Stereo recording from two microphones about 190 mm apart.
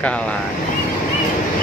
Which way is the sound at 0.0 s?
5° left (ahead or behind).